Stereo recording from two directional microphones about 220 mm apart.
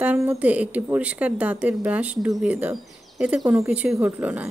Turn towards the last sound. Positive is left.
turn(degrees=-5)  # may be behind; listen again after turning